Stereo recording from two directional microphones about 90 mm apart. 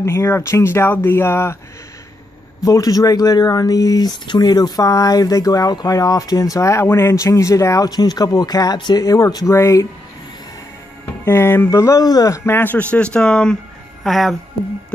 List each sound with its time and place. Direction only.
0.0 s speech: 35° left (ahead or behind)
2.6 s speech: 45° left (ahead or behind)
7.9 s speech: 50° left (ahead or behind)
9.0 s speech: 40° left (ahead or behind)
11.2 s speech: 25° left (ahead or behind); by 12.4 s 45° left (ahead or behind)
12.4 s speech: 25° left (ahead or behind); by 14.3 s centre (ahead or behind)